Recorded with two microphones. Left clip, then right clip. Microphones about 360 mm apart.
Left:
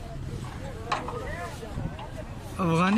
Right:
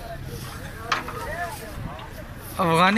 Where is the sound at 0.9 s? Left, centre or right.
Left.